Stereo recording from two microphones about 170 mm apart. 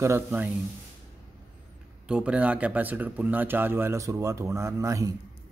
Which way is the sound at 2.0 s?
5° right (ahead or behind).